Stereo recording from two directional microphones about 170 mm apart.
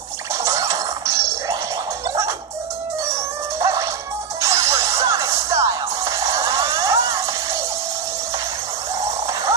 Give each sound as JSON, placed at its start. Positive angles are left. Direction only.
{"t": 0.3, "sound": "music", "side_deg": -20}
{"t": 3.2, "sound": "music", "side_deg": -20}
{"t": 9.3, "sound": "music", "side_deg": -20}